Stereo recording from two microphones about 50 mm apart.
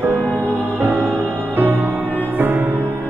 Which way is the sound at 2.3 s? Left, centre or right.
Right.